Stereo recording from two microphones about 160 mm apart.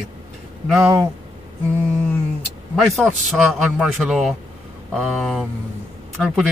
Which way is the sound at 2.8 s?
Centre (ahead or behind).